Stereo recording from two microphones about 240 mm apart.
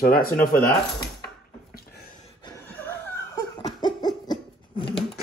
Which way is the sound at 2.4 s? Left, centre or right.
Centre.